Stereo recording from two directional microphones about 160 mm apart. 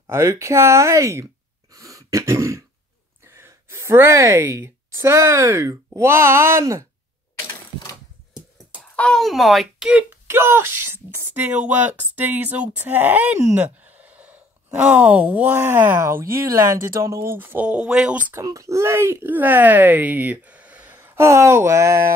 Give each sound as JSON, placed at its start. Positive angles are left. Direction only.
{"t": 0.0, "sound": "speech", "side_deg": -15}
{"t": 1.7, "sound": "throat clearing", "side_deg": -20}
{"t": 3.3, "sound": "a woman's voice", "side_deg": -15}
{"t": 7.3, "sound": "sewing machine", "side_deg": 20}
{"t": 8.9, "sound": "speech", "side_deg": 5}
{"t": 16.3, "sound": "speech", "side_deg": -65}
{"t": 17.0, "sound": "speech", "side_deg": -15}
{"t": 18.4, "sound": "speech", "side_deg": -20}